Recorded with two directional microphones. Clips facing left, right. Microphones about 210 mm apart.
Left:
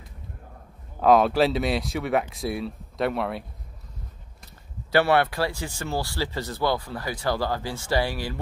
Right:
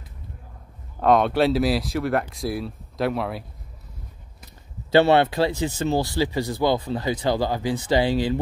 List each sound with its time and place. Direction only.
1.0 s speech: centre (ahead or behind)
4.9 s speech: 20° right (ahead or behind)